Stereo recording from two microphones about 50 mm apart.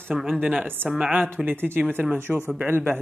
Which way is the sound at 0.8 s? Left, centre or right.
Right.